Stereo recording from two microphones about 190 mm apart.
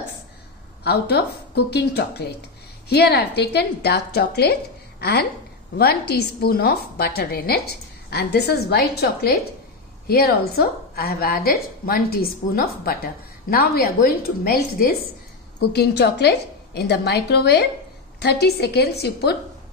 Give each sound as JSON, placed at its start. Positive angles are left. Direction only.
{"t": 0.8, "sound": "a woman's voice", "side_deg": 60}
{"t": 5.8, "sound": "a woman's voice", "side_deg": 55}